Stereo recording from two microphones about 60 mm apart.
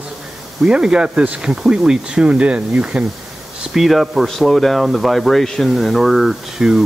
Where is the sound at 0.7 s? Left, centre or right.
Centre.